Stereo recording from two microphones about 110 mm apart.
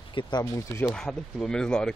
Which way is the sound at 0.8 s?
5° left (ahead or behind).